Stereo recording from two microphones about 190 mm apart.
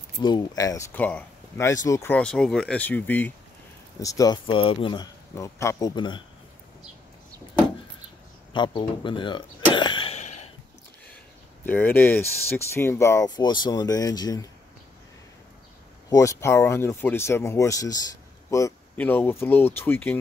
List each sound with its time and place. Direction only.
0.2 s speech: 20° left (ahead or behind)
5.3 s speech: 15° left (ahead or behind)
8.5 s speech: 25° left (ahead or behind)
11.6 s speech: 10° left (ahead or behind)
16.1 s speech: 15° left (ahead or behind)